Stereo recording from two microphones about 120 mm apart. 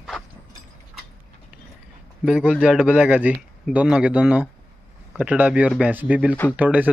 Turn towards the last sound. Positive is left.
turn(degrees=-15)  # may be behind; listen again after turning